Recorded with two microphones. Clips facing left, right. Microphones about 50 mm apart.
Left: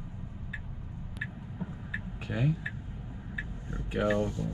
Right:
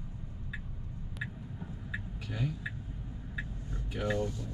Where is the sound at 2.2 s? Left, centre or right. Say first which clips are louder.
Left 7 dB; left.